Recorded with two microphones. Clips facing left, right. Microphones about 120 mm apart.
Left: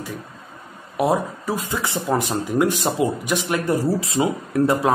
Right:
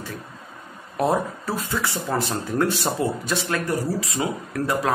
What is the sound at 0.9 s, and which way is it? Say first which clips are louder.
Speech: left 2 dB; 10° left (ahead or behind).